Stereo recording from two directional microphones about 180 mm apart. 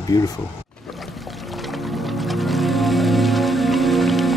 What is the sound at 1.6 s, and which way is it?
Music, centre (ahead or behind).